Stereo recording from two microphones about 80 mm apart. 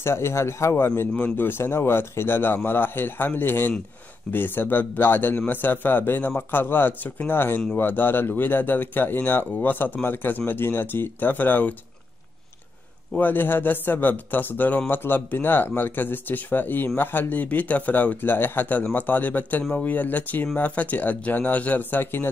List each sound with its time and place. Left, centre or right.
0.0 s speech: left
1.1 s speech: centre
13.1 s speech: left